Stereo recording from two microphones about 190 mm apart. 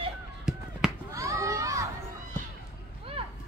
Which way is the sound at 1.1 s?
15° right (ahead or behind).